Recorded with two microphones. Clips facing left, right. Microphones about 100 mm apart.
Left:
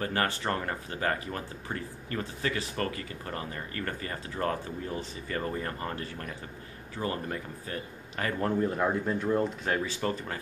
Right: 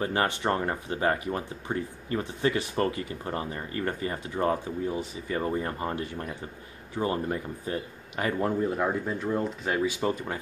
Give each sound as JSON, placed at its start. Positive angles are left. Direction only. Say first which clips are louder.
{"t": 0.0, "sound": "a man's voice", "louder": "right 3 dB", "side_deg": -20}
{"t": 9.8, "sound": "a man's voice", "louder": "right 4 dB", "side_deg": -15}